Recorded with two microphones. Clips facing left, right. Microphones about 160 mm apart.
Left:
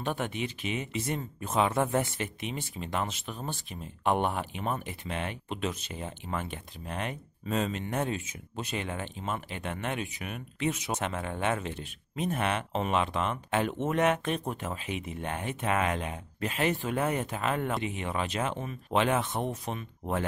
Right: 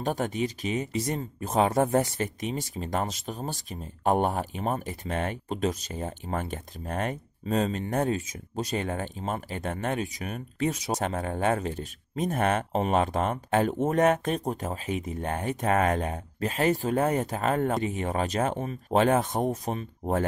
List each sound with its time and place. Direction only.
0.0 s speech: 40° right (ahead or behind)